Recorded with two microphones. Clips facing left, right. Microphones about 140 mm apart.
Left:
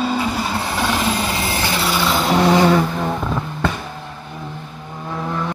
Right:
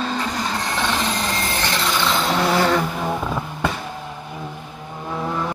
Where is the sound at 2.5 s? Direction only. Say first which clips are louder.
Left 5 dB; 15° left (ahead or behind).